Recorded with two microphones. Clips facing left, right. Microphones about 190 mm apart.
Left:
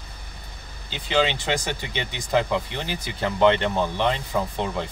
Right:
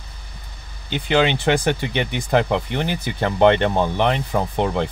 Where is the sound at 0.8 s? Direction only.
55° right (ahead or behind).